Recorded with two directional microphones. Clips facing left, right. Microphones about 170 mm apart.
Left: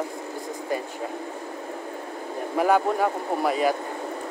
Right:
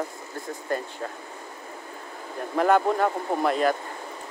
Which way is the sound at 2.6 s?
5° left (ahead or behind).